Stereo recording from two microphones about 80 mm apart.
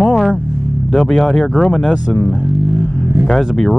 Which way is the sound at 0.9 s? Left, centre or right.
Centre.